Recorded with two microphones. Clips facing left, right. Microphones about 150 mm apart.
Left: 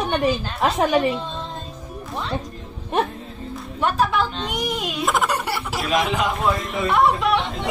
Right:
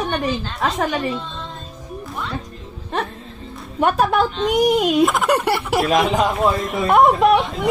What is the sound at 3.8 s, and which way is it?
A man's voice, 55° right (ahead or behind).